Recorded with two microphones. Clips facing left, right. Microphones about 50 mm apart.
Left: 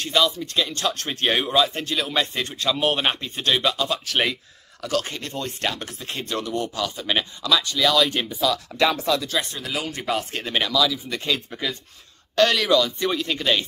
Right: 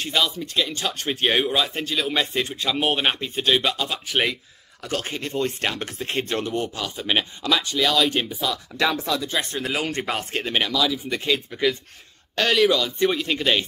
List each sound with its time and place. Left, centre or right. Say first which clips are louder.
0.0 s speech: left 2 dB; centre
4.8 s speech: left 2 dB; right
6.6 s speech: left 1 dB; centre
7.9 s speech: even; centre
9.2 s speech: even; right
9.5 s speech: right 3 dB; right
10.3 s speech: right 3 dB; centre